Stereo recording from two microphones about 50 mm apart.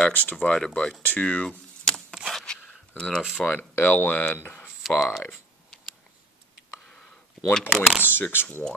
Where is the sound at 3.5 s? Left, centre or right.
Left.